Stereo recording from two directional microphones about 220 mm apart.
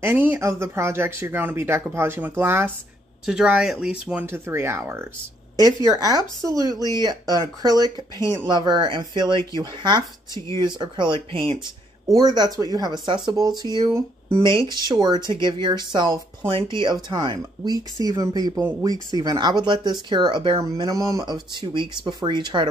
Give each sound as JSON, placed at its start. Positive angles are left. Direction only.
{"t": 0.0, "sound": "speech", "side_deg": -10}
{"t": 12.7, "sound": "speech", "side_deg": -20}